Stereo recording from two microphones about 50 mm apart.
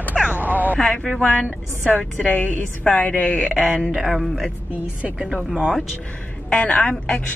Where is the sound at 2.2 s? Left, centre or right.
Left.